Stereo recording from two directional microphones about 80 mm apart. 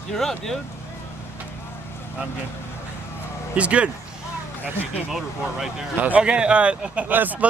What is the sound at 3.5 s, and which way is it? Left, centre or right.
Speech, centre.